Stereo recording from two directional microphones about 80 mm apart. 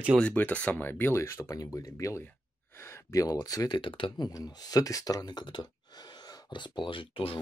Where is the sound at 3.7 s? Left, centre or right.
Left.